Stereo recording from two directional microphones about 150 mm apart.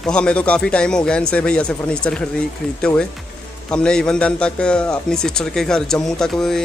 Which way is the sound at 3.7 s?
5° left (ahead or behind).